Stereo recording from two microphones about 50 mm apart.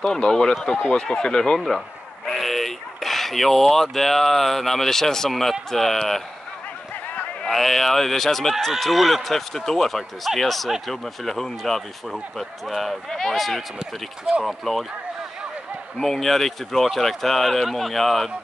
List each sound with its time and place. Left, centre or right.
0.0 s speech: centre
2.2 s speech: centre
7.4 s speech: centre
16.0 s speech: centre